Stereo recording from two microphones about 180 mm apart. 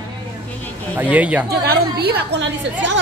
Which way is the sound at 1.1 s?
10° right (ahead or behind).